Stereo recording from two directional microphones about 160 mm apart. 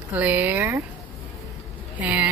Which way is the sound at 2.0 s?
10° right (ahead or behind).